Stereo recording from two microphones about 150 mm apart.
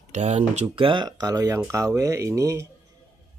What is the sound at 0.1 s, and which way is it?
Speech, 50° right (ahead or behind).